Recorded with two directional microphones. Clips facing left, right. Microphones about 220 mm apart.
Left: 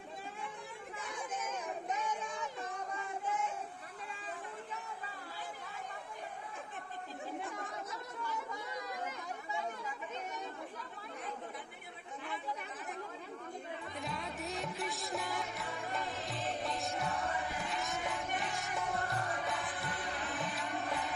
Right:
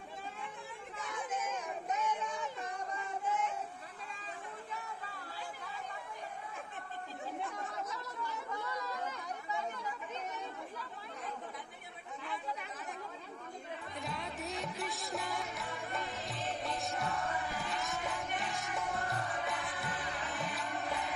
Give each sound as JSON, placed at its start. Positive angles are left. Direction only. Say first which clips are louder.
{"t": 8.6, "sound": "chatter", "louder": "right 1 dB", "side_deg": 15}
{"t": 13.9, "sound": "music", "louder": "right 1 dB", "side_deg": 0}